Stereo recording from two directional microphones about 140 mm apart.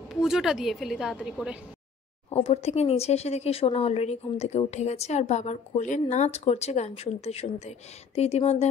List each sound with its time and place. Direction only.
0.1 s a woman's voice: centre (ahead or behind)
2.3 s a woman's voice: 45° left (ahead or behind)